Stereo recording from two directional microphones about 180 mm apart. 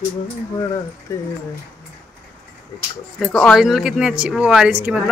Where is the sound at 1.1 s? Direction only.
15° left (ahead or behind).